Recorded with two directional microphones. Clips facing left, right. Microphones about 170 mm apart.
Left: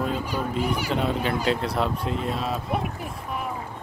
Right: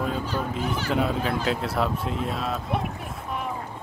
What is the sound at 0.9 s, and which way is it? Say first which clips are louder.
Speech: right 2 dB; centre (ahead or behind).